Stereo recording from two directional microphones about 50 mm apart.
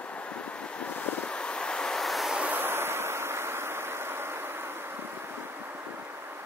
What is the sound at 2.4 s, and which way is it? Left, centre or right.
Vehicle, right.